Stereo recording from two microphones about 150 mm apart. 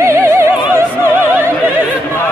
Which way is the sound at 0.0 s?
20° right (ahead or behind).